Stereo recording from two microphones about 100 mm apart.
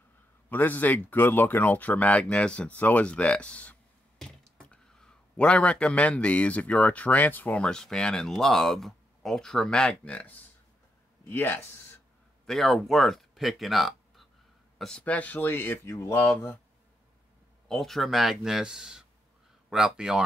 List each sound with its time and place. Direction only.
0.5 s speech: 15° left (ahead or behind)
11.2 s speech: 20° left (ahead or behind)
12.4 s speech: 5° left (ahead or behind); by 16.5 s 25° left (ahead or behind)
17.6 s speech: 5° left (ahead or behind)